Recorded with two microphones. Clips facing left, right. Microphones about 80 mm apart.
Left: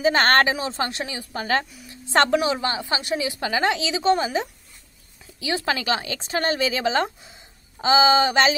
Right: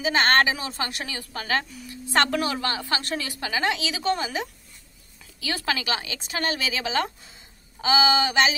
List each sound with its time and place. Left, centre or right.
0.0 s speech: left
0.5 s a woman's voice: left
3.3 s a woman's voice: left